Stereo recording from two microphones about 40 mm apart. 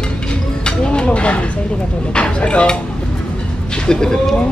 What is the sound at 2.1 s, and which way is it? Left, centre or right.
Cutlery, left.